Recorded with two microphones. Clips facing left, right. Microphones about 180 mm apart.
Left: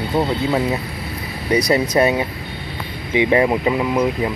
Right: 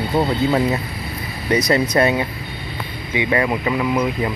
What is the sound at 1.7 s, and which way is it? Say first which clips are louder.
Speech: even; 15° left (ahead or behind).